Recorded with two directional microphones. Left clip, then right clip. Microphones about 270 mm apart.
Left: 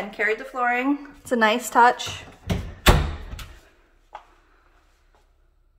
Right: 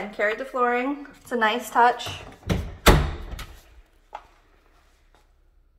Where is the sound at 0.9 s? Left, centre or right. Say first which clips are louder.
Left 5 dB; left.